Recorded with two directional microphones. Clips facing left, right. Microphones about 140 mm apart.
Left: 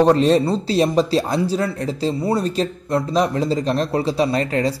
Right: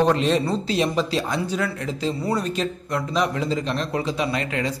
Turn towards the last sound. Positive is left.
turn(degrees=35)  # may be behind; listen again after turning